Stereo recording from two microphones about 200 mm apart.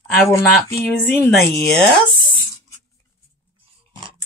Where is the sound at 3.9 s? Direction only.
25° right (ahead or behind).